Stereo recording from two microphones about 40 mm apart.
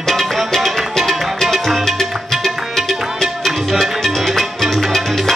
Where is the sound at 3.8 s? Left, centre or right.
Centre.